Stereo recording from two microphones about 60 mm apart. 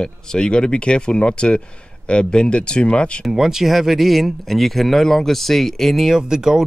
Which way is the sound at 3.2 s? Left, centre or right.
Centre.